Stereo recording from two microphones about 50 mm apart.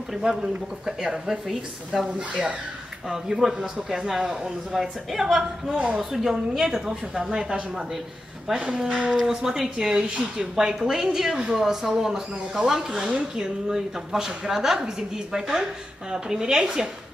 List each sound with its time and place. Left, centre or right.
0.1 s a man's voice: centre
2.1 s speech: right
3.1 s a man's voice: centre